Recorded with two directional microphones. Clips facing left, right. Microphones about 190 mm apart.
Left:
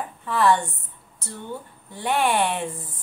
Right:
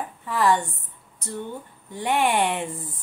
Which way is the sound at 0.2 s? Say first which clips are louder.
Left 1 dB; 10° right (ahead or behind).